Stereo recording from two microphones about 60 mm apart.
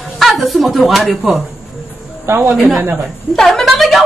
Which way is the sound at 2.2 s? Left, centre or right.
Right.